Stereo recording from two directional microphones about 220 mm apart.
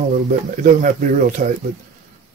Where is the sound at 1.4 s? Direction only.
40° right (ahead or behind).